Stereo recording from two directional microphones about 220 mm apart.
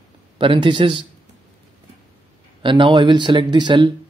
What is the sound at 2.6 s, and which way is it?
Speech, 20° right (ahead or behind).